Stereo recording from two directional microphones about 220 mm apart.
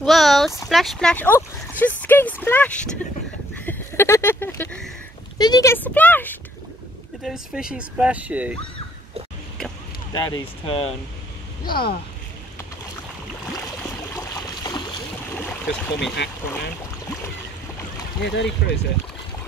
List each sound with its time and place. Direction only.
0.0 s a sound: centre (ahead or behind)
0.7 s speech: centre (ahead or behind)
7.2 s speech: 5° right (ahead or behind)
10.1 s speech: 15° left (ahead or behind)
11.6 s speech: 45° left (ahead or behind)
14.1 s stream: 15° left (ahead or behind)
15.3 s boat: 5° left (ahead or behind)
18.2 s speech: 55° left (ahead or behind)